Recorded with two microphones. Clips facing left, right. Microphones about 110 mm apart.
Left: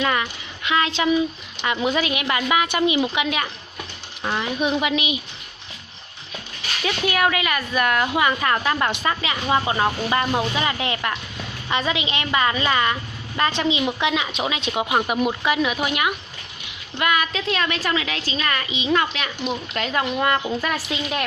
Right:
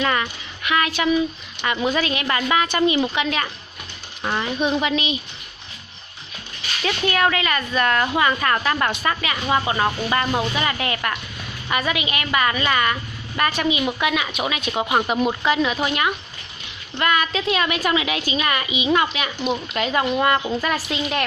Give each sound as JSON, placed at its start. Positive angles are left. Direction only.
{"t": 0.0, "sound": "a sound", "side_deg": 10}
{"t": 0.7, "sound": "speech", "side_deg": 20}
{"t": 6.8, "sound": "a woman's voice", "side_deg": 10}
{"t": 15.0, "sound": "a woman's voice", "side_deg": 5}